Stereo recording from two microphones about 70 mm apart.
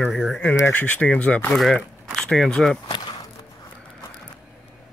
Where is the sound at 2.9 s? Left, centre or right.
Left.